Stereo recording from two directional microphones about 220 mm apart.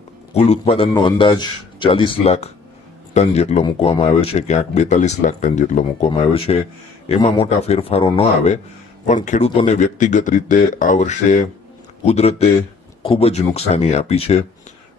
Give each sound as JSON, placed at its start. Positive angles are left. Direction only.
{"t": 0.3, "sound": "a man's voice", "side_deg": 30}